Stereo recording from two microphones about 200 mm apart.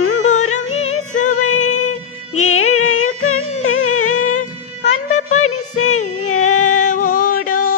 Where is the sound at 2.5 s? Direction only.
90° left.